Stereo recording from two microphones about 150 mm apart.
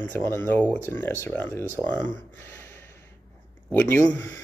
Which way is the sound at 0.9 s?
15° left (ahead or behind).